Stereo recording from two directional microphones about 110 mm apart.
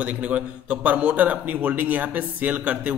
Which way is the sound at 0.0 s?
15° right (ahead or behind).